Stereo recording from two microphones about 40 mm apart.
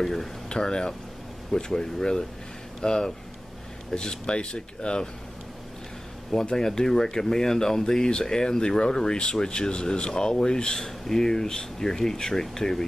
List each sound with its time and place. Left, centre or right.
0.0 s speech: centre
0.5 s speech: centre
6.4 s speech: centre